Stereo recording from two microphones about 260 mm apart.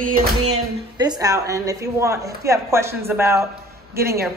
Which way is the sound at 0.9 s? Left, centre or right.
Centre.